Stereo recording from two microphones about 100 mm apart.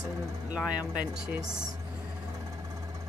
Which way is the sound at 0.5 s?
10° right (ahead or behind).